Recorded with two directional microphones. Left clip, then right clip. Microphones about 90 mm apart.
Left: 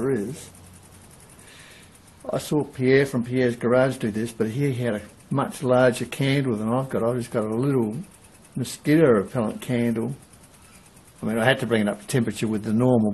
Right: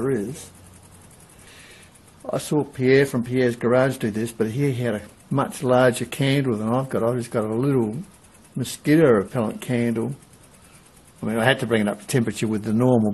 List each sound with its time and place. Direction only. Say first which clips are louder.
2.2 s speech: right 1 dB; 20° right (ahead or behind)
11.2 s speech: right 1 dB; 20° right (ahead or behind)